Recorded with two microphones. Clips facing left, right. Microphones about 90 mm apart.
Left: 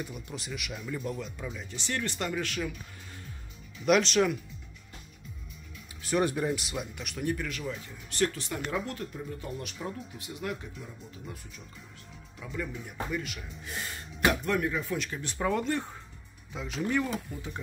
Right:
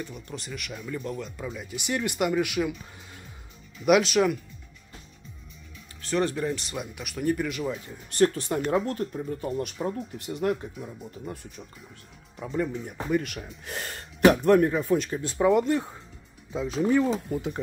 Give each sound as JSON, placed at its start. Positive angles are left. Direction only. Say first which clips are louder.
{"t": 0.0, "sound": "speech", "louder": "right 2 dB", "side_deg": 5}
{"t": 3.8, "sound": "speech", "louder": "right 4 dB", "side_deg": -5}
{"t": 6.0, "sound": "speech", "louder": "right 1 dB", "side_deg": 15}
{"t": 7.3, "sound": "speech", "louder": "right 6 dB", "side_deg": -15}
{"t": 8.1, "sound": "speech", "louder": "right 7 dB", "side_deg": -45}
{"t": 9.8, "sound": "speech", "louder": "right 7 dB", "side_deg": -30}
{"t": 13.1, "sound": "speech", "louder": "right 8 dB", "side_deg": -55}
{"t": 14.3, "sound": "speech", "louder": "right 9 dB", "side_deg": -45}
{"t": 15.3, "sound": "speech", "louder": "right 7 dB", "side_deg": -15}
{"t": 16.5, "sound": "speech", "louder": "right 7 dB", "side_deg": -30}